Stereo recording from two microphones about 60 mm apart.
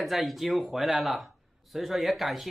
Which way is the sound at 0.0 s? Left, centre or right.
Centre.